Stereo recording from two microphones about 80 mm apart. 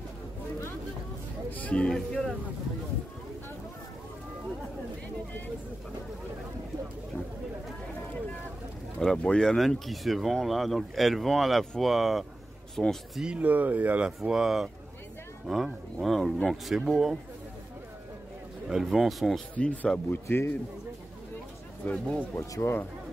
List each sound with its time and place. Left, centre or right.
1.5 s a sound: centre
2.0 s speech: centre
9.0 s speech: centre
13.2 s speech: centre
18.7 s speech: centre
19.5 s speech: centre
21.8 s speech: centre
22.5 s speech: left